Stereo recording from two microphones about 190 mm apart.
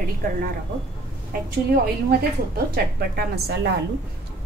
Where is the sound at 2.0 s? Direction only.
55° right (ahead or behind).